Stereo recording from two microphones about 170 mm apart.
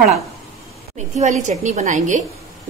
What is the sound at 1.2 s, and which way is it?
A woman's voice, 45° right (ahead or behind).